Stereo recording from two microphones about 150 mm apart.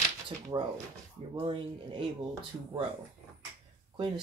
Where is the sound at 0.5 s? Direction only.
30° right (ahead or behind).